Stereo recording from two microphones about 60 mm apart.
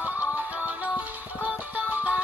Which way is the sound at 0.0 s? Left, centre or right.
Right.